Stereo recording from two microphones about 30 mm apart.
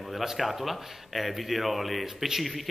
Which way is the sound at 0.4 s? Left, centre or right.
Centre.